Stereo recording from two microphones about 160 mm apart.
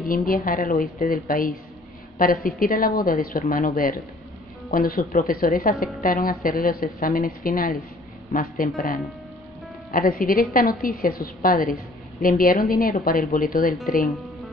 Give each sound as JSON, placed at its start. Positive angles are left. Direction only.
{"t": 0.0, "sound": "a woman's voice", "side_deg": 60}
{"t": 9.8, "sound": "a woman's voice", "side_deg": 65}
{"t": 14.1, "sound": "music", "side_deg": 0}